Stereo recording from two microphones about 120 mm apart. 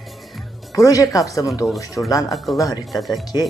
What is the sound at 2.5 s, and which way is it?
Speech, 30° left (ahead or behind).